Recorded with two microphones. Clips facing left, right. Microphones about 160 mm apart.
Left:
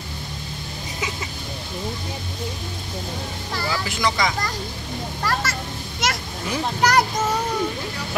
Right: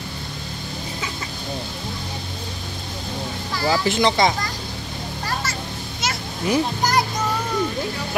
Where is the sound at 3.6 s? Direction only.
30° right (ahead or behind).